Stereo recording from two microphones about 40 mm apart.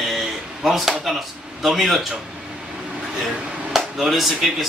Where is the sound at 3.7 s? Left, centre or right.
Centre.